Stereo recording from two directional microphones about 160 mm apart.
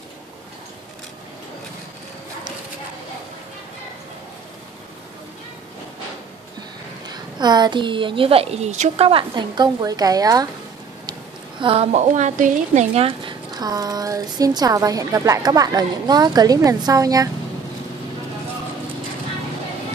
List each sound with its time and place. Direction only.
7.3 s a woman's voice: 25° right (ahead or behind)
11.6 s a woman's voice: 40° right (ahead or behind); by 17.3 s 20° right (ahead or behind)